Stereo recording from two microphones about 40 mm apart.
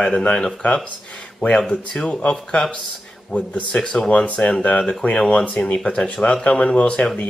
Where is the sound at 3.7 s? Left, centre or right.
Left.